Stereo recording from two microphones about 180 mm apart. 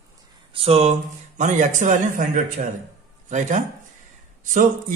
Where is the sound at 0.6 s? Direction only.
35° right (ahead or behind).